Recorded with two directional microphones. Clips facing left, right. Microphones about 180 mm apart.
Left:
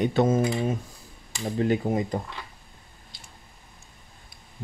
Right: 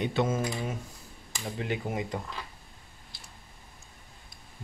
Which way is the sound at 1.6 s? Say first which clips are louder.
Left 9 dB; 40° left (ahead or behind).